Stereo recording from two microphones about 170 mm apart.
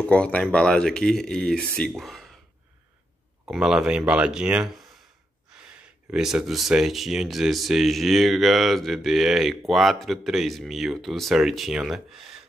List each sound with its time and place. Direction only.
0.0 s speech: 5° left (ahead or behind)
3.4 s speech: 5° right (ahead or behind)
6.1 s speech: 5° right (ahead or behind)